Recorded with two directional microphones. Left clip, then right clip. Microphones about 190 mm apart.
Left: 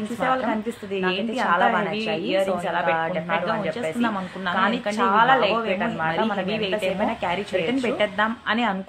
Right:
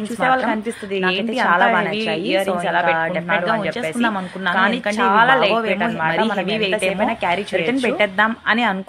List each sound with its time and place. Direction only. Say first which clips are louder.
0.2 s a woman's voice: right 6 dB; 35° right (ahead or behind)